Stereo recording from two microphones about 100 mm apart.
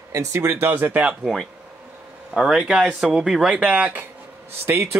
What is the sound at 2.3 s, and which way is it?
Speech, 5° right (ahead or behind).